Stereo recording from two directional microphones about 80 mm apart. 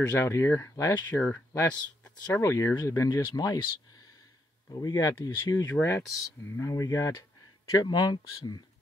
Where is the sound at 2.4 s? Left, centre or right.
Left.